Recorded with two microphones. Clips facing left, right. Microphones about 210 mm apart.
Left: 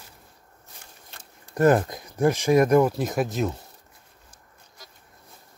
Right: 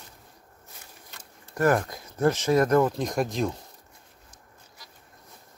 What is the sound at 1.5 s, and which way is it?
Speech, 20° left (ahead or behind).